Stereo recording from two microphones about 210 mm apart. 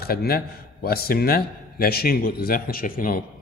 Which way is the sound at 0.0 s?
45° left (ahead or behind).